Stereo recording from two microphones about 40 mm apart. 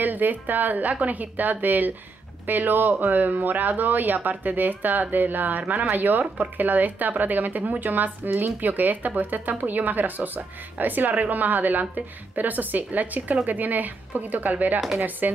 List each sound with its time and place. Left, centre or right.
0.0 s speech: right